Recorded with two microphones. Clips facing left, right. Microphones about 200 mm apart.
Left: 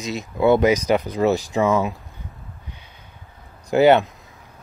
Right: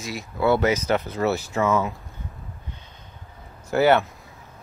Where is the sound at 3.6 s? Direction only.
20° left (ahead or behind).